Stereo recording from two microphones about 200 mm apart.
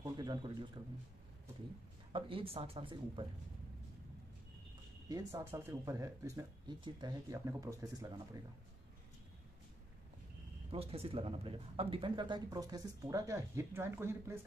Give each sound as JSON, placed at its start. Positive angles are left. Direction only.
{"t": 0.0, "sound": "a sound", "side_deg": -25}
{"t": 2.1, "sound": "speech", "side_deg": -25}
{"t": 5.0, "sound": "speech", "side_deg": -15}
{"t": 10.7, "sound": "speech", "side_deg": -30}